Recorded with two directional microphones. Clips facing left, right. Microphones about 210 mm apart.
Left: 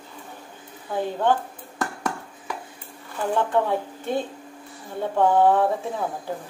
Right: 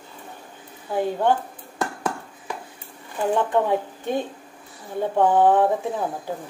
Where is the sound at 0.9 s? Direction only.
10° right (ahead or behind).